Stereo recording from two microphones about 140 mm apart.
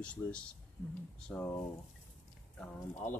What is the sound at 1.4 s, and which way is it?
Speech, 15° left (ahead or behind).